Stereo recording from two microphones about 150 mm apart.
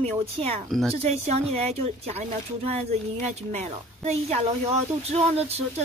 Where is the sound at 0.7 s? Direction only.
Centre (ahead or behind).